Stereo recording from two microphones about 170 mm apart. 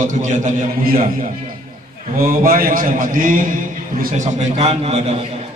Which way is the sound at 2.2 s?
55° right (ahead or behind).